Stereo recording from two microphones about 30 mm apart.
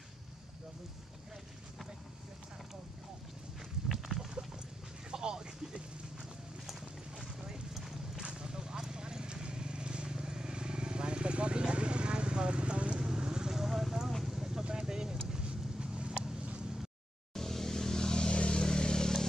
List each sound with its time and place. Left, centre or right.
5.1 s a sound: right
6.6 s clip-clop: centre
8.3 s vehicle: right
13.0 s vehicle: right; by 13.9 s centre
14.2 s a sound: centre
15.3 s vehicle: right
16.2 s vehicle: right
17.3 s vehicle: centre